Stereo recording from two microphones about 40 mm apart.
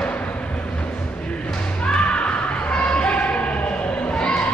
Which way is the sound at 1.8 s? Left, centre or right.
Left.